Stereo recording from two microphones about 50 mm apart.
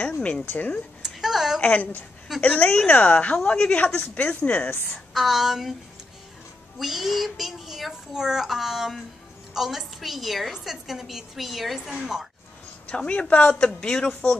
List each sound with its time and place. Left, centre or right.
0.2 s a woman's voice: left
1.0 s a sound: centre
1.6 s a woman's voice: left
5.1 s a woman's voice: centre
6.8 s a woman's voice: centre
12.9 s a woman's voice: left
13.7 s speech: centre